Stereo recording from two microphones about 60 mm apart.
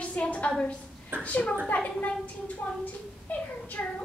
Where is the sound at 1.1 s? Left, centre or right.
Right.